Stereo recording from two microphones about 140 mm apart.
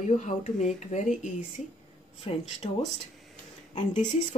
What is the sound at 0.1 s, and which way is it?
Speech, 60° left (ahead or behind).